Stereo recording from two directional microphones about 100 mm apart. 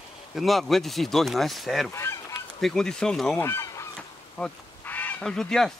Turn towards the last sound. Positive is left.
turn(degrees=5)  # may be behind; listen again after turning